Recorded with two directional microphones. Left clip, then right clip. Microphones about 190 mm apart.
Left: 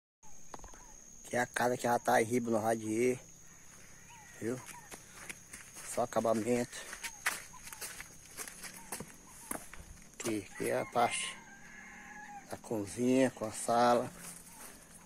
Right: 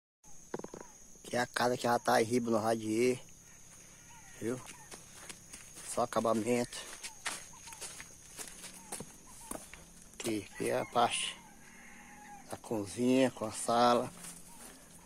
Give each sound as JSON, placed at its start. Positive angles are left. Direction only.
{"t": 1.3, "sound": "speech", "side_deg": -5}
{"t": 4.6, "sound": "walk", "side_deg": 15}
{"t": 5.9, "sound": "speech", "side_deg": -5}
{"t": 10.1, "sound": "speech", "side_deg": 0}
{"t": 12.4, "sound": "speech", "side_deg": -5}